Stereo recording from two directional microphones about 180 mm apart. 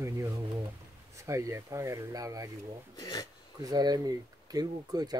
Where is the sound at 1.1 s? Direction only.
15° right (ahead or behind).